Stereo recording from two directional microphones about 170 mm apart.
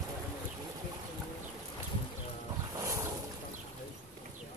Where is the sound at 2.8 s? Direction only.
15° right (ahead or behind).